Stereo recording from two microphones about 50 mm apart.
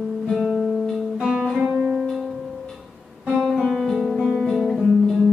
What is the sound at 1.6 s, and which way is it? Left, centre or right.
Music, right.